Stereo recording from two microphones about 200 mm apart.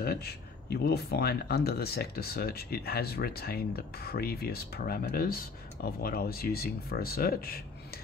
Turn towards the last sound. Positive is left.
turn(degrees=50)  # may be behind; listen again after turning